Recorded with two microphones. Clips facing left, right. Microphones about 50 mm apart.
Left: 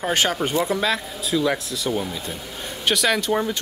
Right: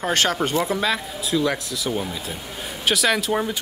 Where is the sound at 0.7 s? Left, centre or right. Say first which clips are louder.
Even; centre.